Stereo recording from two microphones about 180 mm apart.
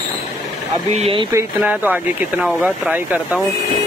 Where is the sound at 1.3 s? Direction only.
10° right (ahead or behind).